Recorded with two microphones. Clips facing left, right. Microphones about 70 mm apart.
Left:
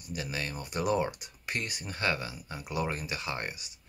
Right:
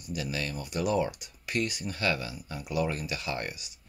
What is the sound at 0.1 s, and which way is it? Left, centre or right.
Speech, left.